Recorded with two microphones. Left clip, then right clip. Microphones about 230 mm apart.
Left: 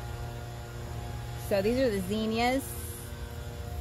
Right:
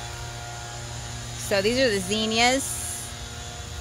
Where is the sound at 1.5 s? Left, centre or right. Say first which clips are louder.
Right 5 dB; right.